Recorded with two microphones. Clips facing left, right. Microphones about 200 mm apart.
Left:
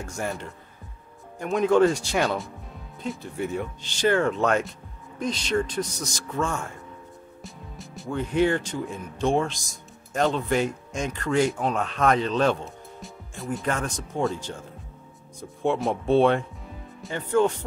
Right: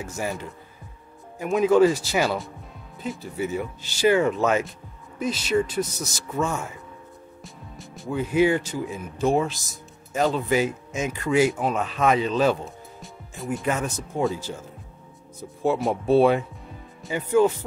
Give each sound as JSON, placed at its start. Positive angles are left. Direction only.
{"t": 0.0, "sound": "speech", "side_deg": -5}
{"t": 15.6, "sound": "speech", "side_deg": -5}